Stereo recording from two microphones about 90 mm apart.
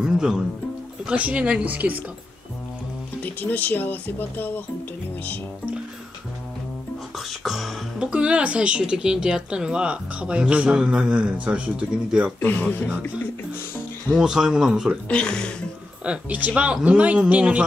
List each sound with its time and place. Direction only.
0.0 s music: 5° right (ahead or behind)
1.0 s speech: 15° right (ahead or behind)
3.3 s speech: 20° left (ahead or behind)
7.4 s speech: centre (ahead or behind)
12.4 s speech: 20° left (ahead or behind)
14.1 s speech: 5° right (ahead or behind)
15.0 s speech: 10° left (ahead or behind)
16.1 s speech: 20° right (ahead or behind)